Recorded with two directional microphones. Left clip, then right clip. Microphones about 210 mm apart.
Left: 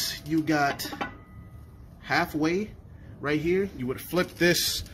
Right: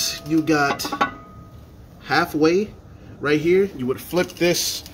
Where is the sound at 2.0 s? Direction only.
Centre (ahead or behind).